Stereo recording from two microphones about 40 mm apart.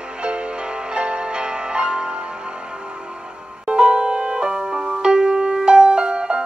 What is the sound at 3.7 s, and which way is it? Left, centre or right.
Music, right.